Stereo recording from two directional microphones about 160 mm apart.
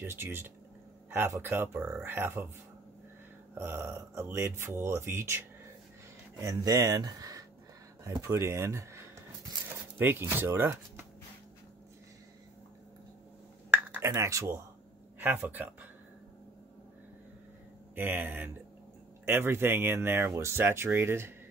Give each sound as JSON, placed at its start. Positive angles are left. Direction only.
{"t": 0.0, "sound": "speech", "side_deg": -15}
{"t": 3.5, "sound": "speech", "side_deg": -15}
{"t": 6.4, "sound": "speech", "side_deg": -25}
{"t": 8.0, "sound": "a sound", "side_deg": -20}
{"t": 13.7, "sound": "a sound", "side_deg": -15}
{"t": 15.1, "sound": "speech", "side_deg": -10}
{"t": 17.9, "sound": "speech", "side_deg": -10}